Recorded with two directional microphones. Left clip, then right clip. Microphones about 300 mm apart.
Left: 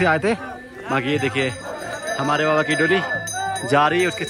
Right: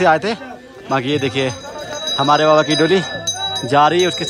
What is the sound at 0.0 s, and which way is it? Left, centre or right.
Speech, centre.